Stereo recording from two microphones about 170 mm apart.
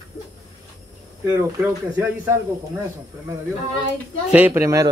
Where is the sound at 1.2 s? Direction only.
15° right (ahead or behind).